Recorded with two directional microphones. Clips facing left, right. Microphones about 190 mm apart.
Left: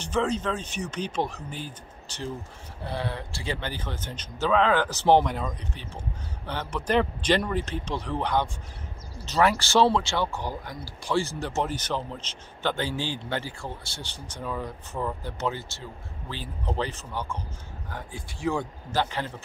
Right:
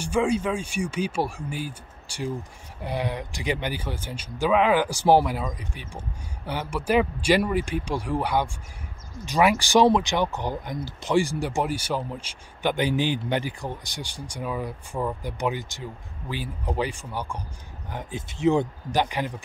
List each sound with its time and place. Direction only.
0.0 s speech: 10° right (ahead or behind)